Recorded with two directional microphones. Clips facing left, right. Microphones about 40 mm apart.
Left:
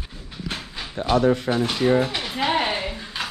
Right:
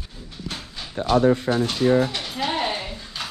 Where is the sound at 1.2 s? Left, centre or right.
Left.